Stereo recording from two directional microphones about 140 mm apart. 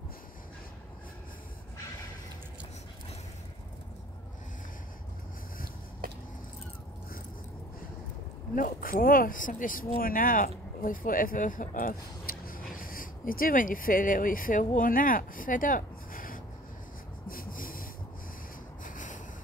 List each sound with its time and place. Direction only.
8.5 s speech: 85° left
17.3 s snort: 85° left
18.9 s snort: 65° left (ahead or behind)